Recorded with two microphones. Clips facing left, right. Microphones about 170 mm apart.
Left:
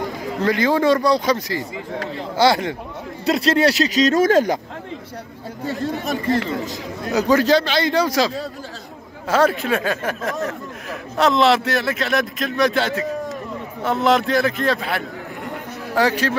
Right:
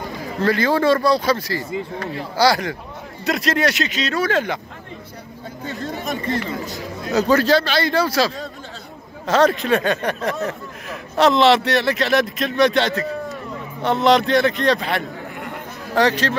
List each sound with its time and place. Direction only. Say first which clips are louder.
0.4 s a man's voice: even; 20° left (ahead or behind); by 4.6 s 40° left (ahead or behind)
6.7 s a man's voice: even; 15° left (ahead or behind)
9.3 s a man's voice: right 1 dB; 5° left (ahead or behind)